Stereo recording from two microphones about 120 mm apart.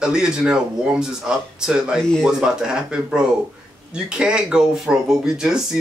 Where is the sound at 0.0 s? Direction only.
5° right (ahead or behind).